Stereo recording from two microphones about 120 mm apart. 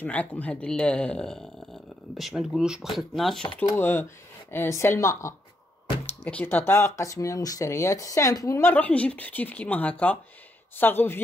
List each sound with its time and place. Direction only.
0.0 s speech: 15° left (ahead or behind)
3.7 s a woman's voice: 20° left (ahead or behind)